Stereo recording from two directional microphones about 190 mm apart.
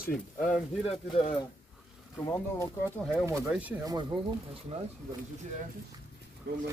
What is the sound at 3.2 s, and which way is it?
Speech, 15° right (ahead or behind).